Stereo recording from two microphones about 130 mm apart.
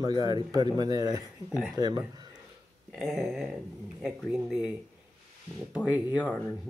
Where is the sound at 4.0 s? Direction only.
5° right (ahead or behind).